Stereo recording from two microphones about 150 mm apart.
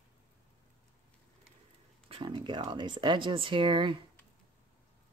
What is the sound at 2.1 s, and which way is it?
Speech, 30° right (ahead or behind).